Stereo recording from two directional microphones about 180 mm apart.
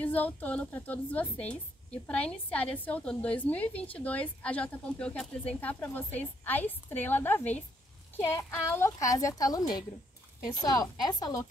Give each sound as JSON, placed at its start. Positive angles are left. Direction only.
{"t": 0.0, "sound": "a woman's voice", "side_deg": 10}